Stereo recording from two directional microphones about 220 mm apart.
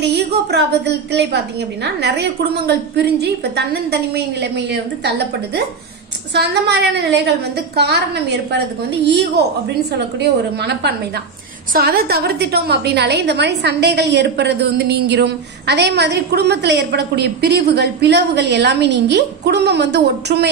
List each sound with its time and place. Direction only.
0.5 s a woman's voice: 50° right (ahead or behind)
6.3 s a woman's voice: 50° right (ahead or behind)
10.6 s a woman's voice: 50° right (ahead or behind)